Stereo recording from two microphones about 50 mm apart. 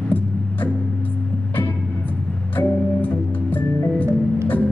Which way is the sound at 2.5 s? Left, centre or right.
Left.